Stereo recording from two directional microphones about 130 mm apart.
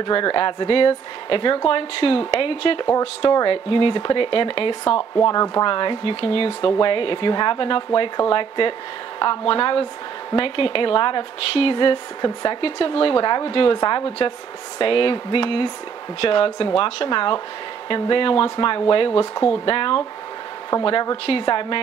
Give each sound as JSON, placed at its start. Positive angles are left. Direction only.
{"t": 0.0, "sound": "a woman's voice", "side_deg": 40}
{"t": 5.2, "sound": "speech", "side_deg": 25}
{"t": 5.7, "sound": "a woman's voice", "side_deg": 40}